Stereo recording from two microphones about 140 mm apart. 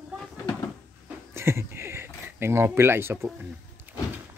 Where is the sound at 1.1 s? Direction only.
20° right (ahead or behind).